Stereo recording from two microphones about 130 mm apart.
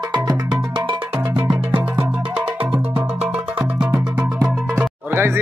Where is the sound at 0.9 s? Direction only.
40° right (ahead or behind).